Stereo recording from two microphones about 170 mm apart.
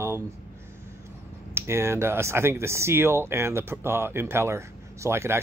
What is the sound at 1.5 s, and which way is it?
Speech, 15° right (ahead or behind).